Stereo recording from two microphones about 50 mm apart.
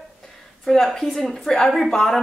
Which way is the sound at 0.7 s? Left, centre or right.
Centre.